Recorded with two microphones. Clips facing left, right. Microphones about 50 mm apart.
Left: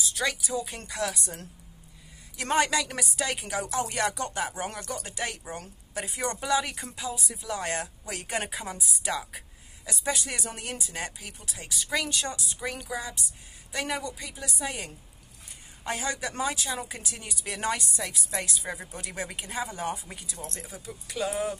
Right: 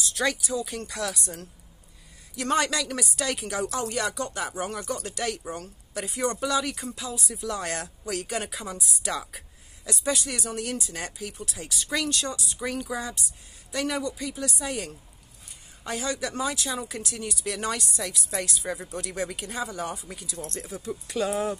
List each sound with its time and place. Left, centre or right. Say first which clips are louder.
0.1 s a sound: right 4 dB; centre
0.5 s a man's voice: right 2 dB; left
1.1 s speech: right 1 dB; left; by 3.8 s centre
3.8 s speech: even; left
4.9 s speech: right 3 dB; centre
6.0 s a woman's voice: right 2 dB; centre
8.7 s a woman's voice: right 1 dB; centre
15.8 s a man's voice: right 1 dB; left
18.6 s speech: right 4 dB; centre; by 20.2 s left
20.5 s a woman's voice: right 7 dB; centre